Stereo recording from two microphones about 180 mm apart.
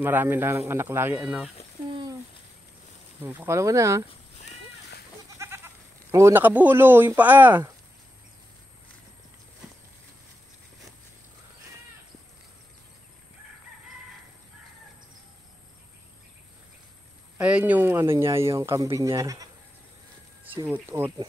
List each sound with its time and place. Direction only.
0.0 s speech: 10° right (ahead or behind)
1.9 s a sound: 25° right (ahead or behind)
3.2 s speech: 10° right (ahead or behind)
5.4 s goat: 15° right (ahead or behind)
6.1 s speech: 15° right (ahead or behind)
17.4 s speech: 5° right (ahead or behind)
20.6 s speech: 15° right (ahead or behind)